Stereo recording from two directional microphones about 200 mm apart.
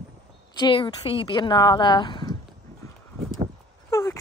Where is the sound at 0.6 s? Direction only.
25° left (ahead or behind).